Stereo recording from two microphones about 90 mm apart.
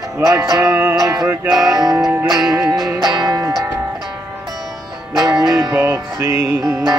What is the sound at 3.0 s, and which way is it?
Music, 50° right (ahead or behind).